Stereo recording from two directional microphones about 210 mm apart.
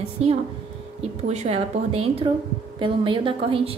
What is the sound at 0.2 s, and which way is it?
A woman's voice, 30° right (ahead or behind).